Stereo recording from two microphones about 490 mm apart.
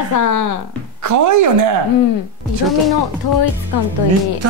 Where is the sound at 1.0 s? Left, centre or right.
Right.